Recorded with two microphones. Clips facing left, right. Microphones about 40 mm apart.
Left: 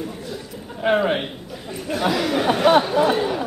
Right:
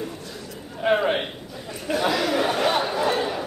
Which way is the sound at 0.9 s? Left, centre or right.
Centre.